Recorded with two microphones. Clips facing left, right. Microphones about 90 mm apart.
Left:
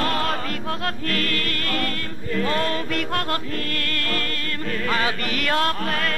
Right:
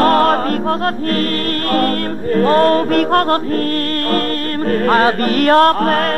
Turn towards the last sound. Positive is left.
turn(degrees=-45)  # may be behind; listen again after turning